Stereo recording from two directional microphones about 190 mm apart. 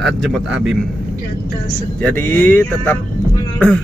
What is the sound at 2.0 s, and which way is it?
Speech, 10° left (ahead or behind).